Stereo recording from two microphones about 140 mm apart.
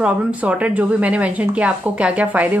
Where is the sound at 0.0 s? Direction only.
10° right (ahead or behind).